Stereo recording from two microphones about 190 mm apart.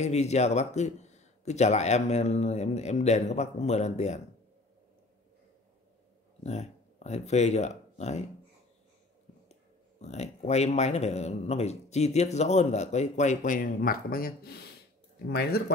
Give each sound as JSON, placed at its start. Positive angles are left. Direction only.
{"t": 0.0, "sound": "speech", "side_deg": 35}
{"t": 6.4, "sound": "speech", "side_deg": 35}
{"t": 10.0, "sound": "speech", "side_deg": 35}